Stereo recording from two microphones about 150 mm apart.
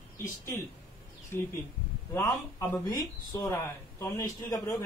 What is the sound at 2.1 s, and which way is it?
Speech, 15° left (ahead or behind).